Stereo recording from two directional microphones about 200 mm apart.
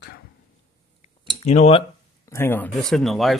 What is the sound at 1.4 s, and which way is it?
Speech, 35° left (ahead or behind).